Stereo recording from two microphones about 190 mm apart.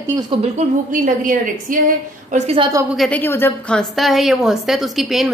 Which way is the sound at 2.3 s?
30° right (ahead or behind).